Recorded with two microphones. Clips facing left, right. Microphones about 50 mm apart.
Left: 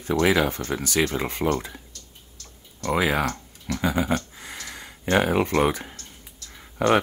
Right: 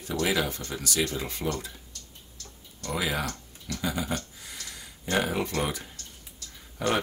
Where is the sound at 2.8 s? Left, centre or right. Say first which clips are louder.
Left 7 dB; left.